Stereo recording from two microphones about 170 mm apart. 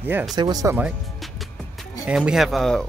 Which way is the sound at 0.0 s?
10° right (ahead or behind).